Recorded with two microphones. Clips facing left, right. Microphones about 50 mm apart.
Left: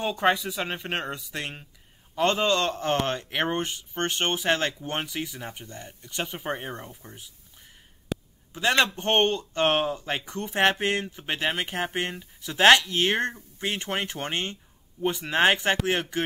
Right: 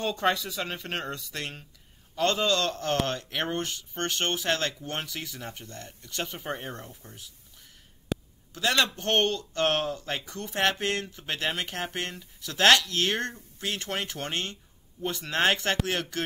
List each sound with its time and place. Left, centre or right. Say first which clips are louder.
0.0 s speech: left 3 dB; centre
8.1 s a sound: even; centre
8.5 s speech: left 3 dB; left